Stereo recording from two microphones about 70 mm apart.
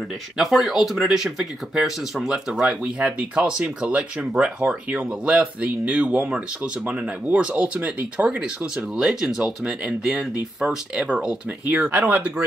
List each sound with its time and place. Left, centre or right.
0.4 s speech: centre
11.1 s speech: centre